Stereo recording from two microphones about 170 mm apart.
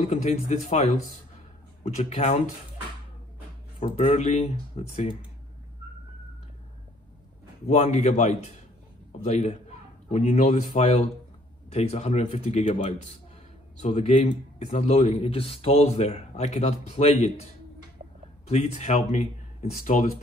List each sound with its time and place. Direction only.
0.1 s a man's voice: 40° left (ahead or behind)
3.8 s a man's voice: 35° left (ahead or behind)
7.6 s a man's voice: 40° left (ahead or behind)
18.5 s a man's voice: 40° left (ahead or behind)